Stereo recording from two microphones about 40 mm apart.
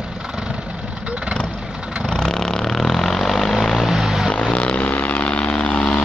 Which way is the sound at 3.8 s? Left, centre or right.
Centre.